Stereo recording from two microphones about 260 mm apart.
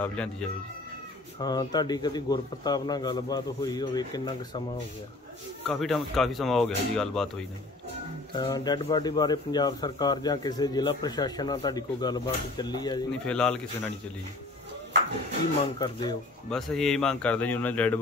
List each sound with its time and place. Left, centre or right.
0.0 s speech: centre
1.4 s speech: centre
5.7 s speech: centre
8.4 s speech: centre
13.3 s speech: centre
15.8 s speech: centre
16.4 s speech: centre